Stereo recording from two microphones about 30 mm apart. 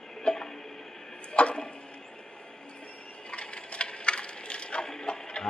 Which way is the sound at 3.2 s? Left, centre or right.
Left.